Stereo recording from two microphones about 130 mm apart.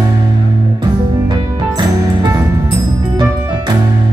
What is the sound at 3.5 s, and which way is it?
Music, 35° right (ahead or behind).